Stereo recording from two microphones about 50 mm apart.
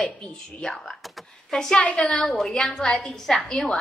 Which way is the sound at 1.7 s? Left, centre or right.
Left.